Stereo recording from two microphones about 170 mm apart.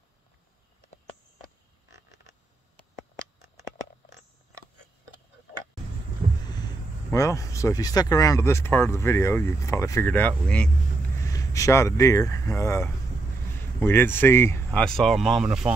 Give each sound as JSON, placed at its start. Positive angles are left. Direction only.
{"t": 6.4, "sound": "speech", "side_deg": 25}
{"t": 11.1, "sound": "speech", "side_deg": 20}